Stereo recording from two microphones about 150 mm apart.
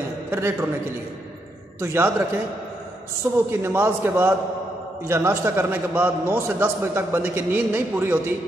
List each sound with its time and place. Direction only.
0.3 s a man's voice: 15° right (ahead or behind)
1.8 s a man's voice: 15° right (ahead or behind)
3.4 s a man's voice: 15° right (ahead or behind)